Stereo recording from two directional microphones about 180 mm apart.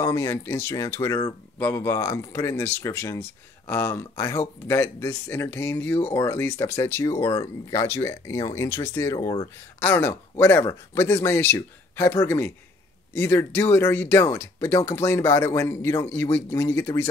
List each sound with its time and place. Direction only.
0.0 s speech: 15° left (ahead or behind)
9.8 s speech: 10° left (ahead or behind)